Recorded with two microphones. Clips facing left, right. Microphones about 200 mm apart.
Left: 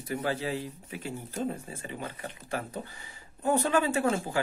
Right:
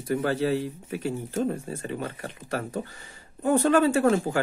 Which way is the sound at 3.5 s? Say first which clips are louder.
Right 6 dB; 45° right (ahead or behind).